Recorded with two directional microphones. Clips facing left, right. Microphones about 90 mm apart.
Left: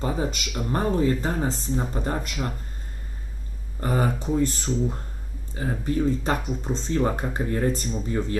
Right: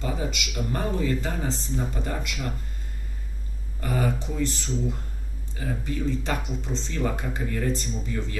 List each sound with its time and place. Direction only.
0.0 s speech: 35° left (ahead or behind)
3.8 s speech: 35° left (ahead or behind)